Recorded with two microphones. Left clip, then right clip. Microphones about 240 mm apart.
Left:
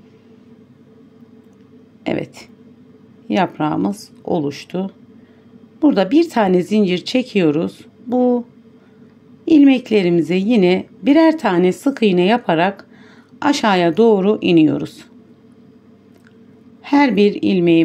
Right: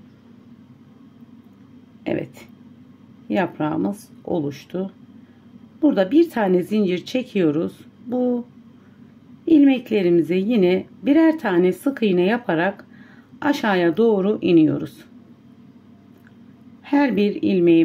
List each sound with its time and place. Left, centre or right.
2.0 s a woman's voice: centre
9.5 s a woman's voice: centre
16.8 s a woman's voice: centre